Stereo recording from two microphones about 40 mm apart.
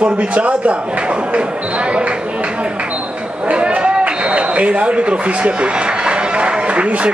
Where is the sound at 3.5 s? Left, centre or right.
Right.